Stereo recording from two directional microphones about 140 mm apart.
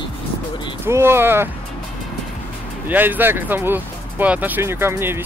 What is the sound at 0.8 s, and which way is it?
Speech, 20° right (ahead or behind).